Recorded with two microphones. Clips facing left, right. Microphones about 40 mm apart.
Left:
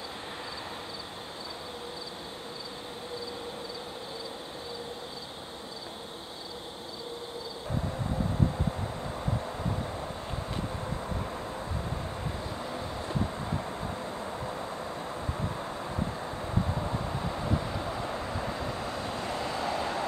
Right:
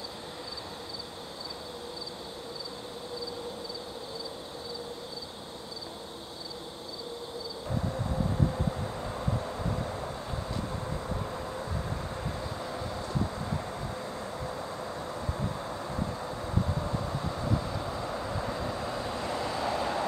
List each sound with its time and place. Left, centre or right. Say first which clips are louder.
8.4 s vehicle: even; centre
12.8 s vehicle: even; left
15.7 s vehicle: even; centre; by 20.1 s left